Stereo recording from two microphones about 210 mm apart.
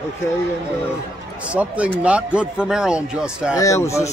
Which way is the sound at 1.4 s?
5° right (ahead or behind).